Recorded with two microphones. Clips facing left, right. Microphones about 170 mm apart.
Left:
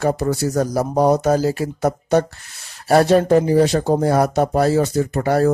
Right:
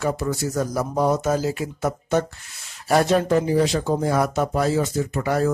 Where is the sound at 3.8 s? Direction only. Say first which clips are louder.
Left 5 dB; 35° left (ahead or behind).